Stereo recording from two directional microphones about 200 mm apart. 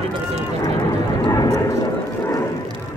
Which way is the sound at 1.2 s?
20° left (ahead or behind).